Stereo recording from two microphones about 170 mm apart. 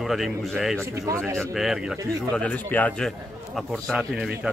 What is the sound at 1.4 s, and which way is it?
Speech, centre (ahead or behind).